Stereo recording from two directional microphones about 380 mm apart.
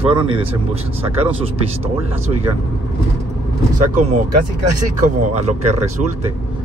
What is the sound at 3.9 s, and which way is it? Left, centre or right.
Speech, centre.